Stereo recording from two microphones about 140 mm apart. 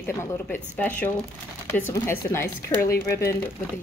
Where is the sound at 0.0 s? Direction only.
15° left (ahead or behind).